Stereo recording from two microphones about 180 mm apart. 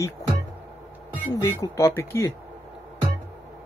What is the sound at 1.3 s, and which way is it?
Speech, 15° left (ahead or behind).